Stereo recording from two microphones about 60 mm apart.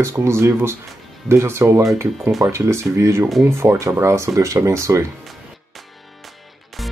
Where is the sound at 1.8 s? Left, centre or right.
Right.